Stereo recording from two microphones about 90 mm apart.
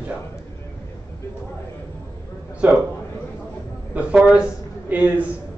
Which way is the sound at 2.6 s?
15° right (ahead or behind).